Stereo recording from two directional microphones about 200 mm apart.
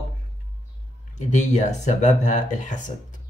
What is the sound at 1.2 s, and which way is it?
Speech, 35° left (ahead or behind).